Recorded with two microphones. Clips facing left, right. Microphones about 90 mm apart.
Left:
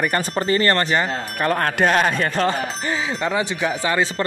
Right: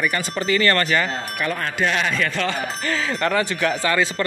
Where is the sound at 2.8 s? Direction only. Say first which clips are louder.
Even; 15° left (ahead or behind).